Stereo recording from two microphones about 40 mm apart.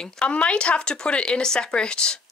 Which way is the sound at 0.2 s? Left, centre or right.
Left.